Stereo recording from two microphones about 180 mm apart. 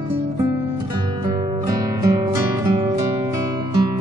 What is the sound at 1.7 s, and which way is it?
Music, 20° right (ahead or behind).